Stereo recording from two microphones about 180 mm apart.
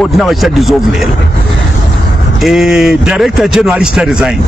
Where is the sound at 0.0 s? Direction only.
Centre (ahead or behind).